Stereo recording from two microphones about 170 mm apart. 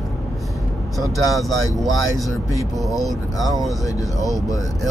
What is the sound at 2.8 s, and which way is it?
Speech, centre (ahead or behind).